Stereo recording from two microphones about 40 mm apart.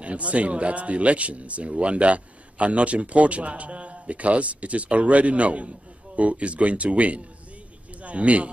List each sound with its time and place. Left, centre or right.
0.0 s a man's voice: right